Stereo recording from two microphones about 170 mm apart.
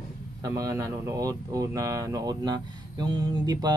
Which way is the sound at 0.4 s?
20° right (ahead or behind).